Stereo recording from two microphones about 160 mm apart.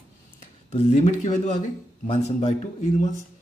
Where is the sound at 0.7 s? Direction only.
45° left (ahead or behind).